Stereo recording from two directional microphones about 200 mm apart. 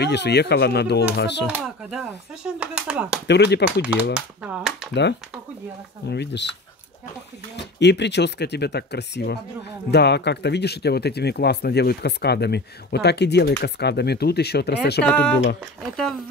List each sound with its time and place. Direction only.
0.0 s speech: 55° left (ahead or behind)
1.5 s speech: centre (ahead or behind)
3.3 s speech: 60° left (ahead or behind)
3.8 s speech: 5° right (ahead or behind)
6.0 s speech: 60° left (ahead or behind)
7.5 s speech: 60° left (ahead or behind)
15.0 s speech: 5° left (ahead or behind)